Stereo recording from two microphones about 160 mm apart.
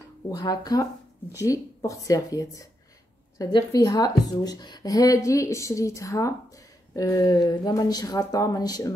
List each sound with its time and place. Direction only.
0.3 s speech: 25° left (ahead or behind)